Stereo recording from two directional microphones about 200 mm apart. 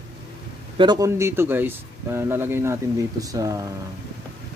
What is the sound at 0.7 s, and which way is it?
Speech, 20° right (ahead or behind).